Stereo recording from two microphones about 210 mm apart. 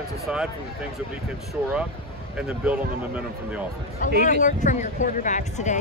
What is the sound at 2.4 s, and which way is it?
Speech, 5° right (ahead or behind).